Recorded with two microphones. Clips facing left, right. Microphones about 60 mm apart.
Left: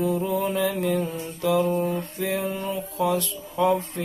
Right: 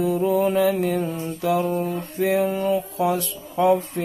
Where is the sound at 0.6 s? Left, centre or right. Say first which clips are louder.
Right 3 dB; right.